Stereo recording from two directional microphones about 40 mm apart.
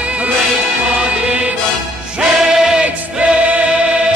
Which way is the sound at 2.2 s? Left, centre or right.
Centre.